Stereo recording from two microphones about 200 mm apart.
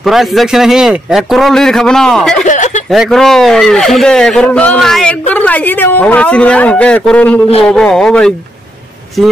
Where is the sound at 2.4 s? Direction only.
40° left (ahead or behind).